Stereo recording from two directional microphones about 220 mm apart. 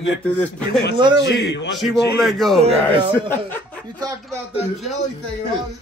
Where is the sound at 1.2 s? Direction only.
50° left (ahead or behind).